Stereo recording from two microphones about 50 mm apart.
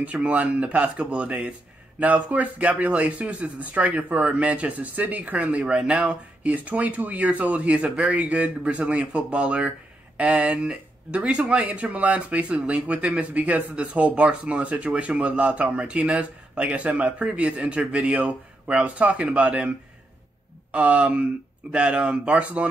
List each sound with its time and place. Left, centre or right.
0.0 s speech: right
20.7 s speech: right